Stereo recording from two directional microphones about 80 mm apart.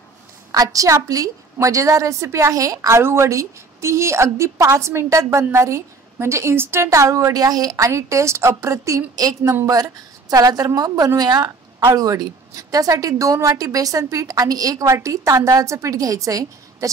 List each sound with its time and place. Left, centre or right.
0.5 s a woman's voice: right
9.8 s a woman's voice: right